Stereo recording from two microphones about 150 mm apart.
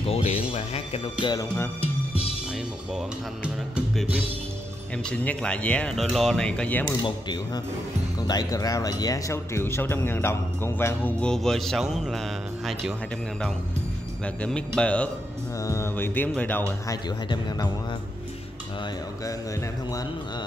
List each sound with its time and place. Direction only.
0.0 s speech: 45° left (ahead or behind)
1.2 s speech: 25° left (ahead or behind)
2.9 s speech: 5° right (ahead or behind)
4.9 s speech: 10° left (ahead or behind)
7.0 s speech: 30° left (ahead or behind); by 12.2 s 5° right (ahead or behind)
14.2 s speech: 10° left (ahead or behind)
15.6 s speech: 20° left (ahead or behind)
16.8 s speech: 25° left (ahead or behind)